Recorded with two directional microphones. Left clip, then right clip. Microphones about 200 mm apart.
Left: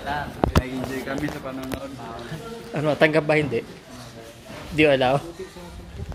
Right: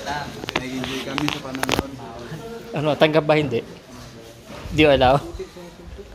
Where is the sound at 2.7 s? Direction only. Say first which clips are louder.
Right 2 dB; 10° right (ahead or behind).